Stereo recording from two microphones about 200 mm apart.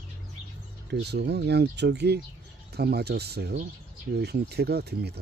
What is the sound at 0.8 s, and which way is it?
Speech, 55° right (ahead or behind).